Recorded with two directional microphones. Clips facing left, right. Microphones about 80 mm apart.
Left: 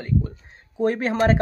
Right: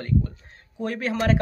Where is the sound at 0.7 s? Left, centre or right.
Left.